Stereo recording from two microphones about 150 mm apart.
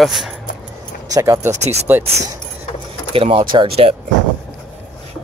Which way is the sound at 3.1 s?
35° right (ahead or behind).